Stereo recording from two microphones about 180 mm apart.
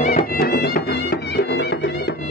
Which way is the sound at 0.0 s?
50° left (ahead or behind).